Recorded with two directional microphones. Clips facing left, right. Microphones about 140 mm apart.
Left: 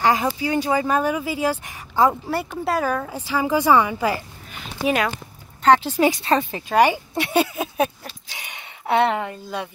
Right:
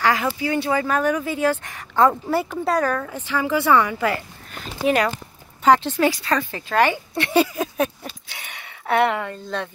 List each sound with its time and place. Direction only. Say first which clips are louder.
0.0 s speech: left 1 dB; 20° left (ahead or behind)
4.5 s speech: right 2 dB; 5° left (ahead or behind)
8.4 s a sound: even; 20° left (ahead or behind)